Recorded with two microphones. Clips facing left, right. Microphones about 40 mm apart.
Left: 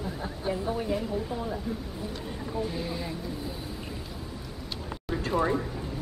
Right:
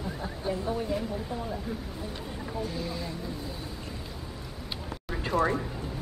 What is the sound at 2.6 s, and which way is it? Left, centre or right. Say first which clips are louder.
Speech: left 2 dB; centre.